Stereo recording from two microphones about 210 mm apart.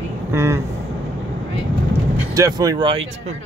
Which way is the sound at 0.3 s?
10° right (ahead or behind).